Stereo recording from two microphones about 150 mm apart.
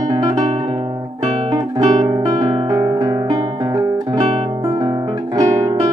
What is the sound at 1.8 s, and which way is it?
Music, 25° right (ahead or behind).